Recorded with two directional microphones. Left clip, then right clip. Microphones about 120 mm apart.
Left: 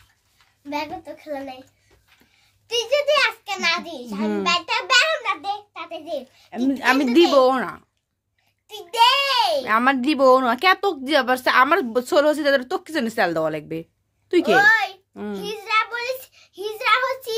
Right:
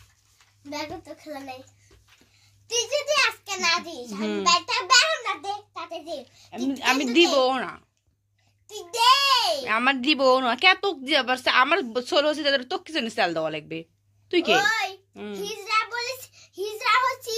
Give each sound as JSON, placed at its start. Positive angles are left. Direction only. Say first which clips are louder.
{"t": 0.7, "sound": "a child's voice", "louder": "left 5 dB", "side_deg": 20}
{"t": 2.7, "sound": "a child's voice", "louder": "left 5 dB", "side_deg": 15}
{"t": 6.7, "sound": "a woman's voice", "louder": "left 4 dB", "side_deg": 45}
{"t": 8.6, "sound": "a child's voice", "louder": "left 2 dB", "side_deg": 20}
{"t": 9.7, "sound": "speech", "louder": "left 3 dB", "side_deg": 30}
{"t": 14.6, "sound": "a child's voice", "louder": "left 8 dB", "side_deg": 20}
{"t": 15.6, "sound": "child singing", "louder": "left 4 dB", "side_deg": 20}